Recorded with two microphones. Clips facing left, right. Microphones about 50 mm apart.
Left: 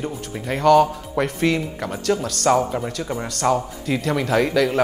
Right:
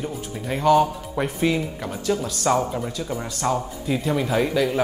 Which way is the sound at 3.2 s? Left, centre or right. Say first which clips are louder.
Left 5 dB; left.